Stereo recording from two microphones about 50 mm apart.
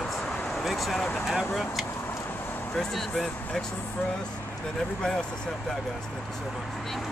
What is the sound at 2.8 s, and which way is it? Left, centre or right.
Speech, centre.